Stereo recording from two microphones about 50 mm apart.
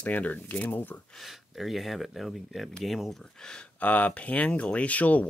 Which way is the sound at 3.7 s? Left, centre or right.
Left.